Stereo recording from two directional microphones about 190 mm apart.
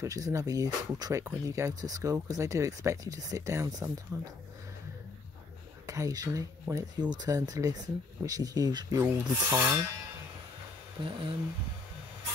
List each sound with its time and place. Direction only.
0.0 s speech: 15° right (ahead or behind)
5.9 s speech: 15° right (ahead or behind)
11.0 s speech: 25° right (ahead or behind)